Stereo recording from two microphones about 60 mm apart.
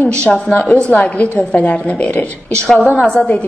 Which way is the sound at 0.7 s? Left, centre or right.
Left.